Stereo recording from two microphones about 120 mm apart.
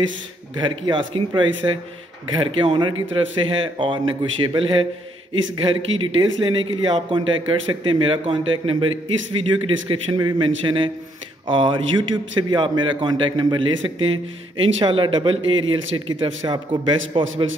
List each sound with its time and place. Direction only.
0.6 s a man's voice: 40° right (ahead or behind)